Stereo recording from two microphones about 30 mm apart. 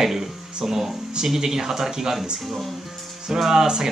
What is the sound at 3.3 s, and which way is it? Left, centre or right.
Speech, centre.